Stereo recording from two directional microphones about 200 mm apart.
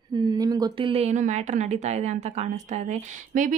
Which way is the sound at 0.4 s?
20° right (ahead or behind).